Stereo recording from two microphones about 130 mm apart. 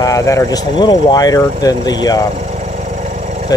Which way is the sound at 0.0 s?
25° left (ahead or behind).